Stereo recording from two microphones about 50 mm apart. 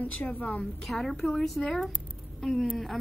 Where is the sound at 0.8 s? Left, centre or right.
Centre.